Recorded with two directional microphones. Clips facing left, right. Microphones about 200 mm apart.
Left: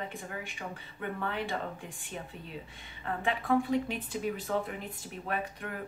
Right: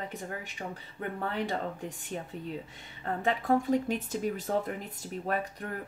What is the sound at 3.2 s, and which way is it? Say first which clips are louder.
Speech: right 2 dB; 40° right (ahead or behind).